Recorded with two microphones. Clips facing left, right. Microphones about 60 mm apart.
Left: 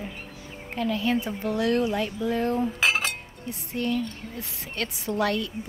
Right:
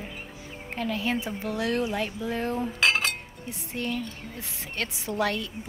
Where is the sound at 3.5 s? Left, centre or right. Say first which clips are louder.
Left 4 dB; right.